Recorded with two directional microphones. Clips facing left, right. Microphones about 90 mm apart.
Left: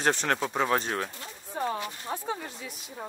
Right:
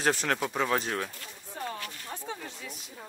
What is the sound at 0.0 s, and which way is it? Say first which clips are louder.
Speech: left 1 dB; centre (ahead or behind).